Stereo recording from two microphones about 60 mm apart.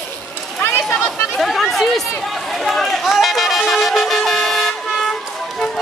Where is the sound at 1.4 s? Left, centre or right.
Centre.